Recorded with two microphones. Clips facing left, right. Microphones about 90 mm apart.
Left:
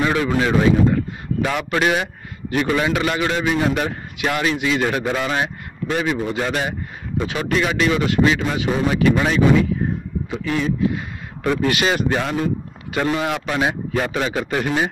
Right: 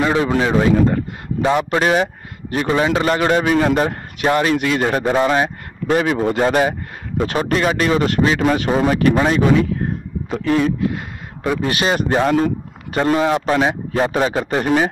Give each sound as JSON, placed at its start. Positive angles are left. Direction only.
{"t": 0.0, "sound": "a man's voice", "side_deg": -30}
{"t": 0.7, "sound": "speech", "side_deg": -45}
{"t": 1.4, "sound": "a man's voice", "side_deg": -25}
{"t": 4.6, "sound": "speech", "side_deg": -50}
{"t": 4.8, "sound": "a man's voice", "side_deg": -30}
{"t": 10.3, "sound": "speech", "side_deg": -45}
{"t": 11.6, "sound": "a man's voice", "side_deg": -30}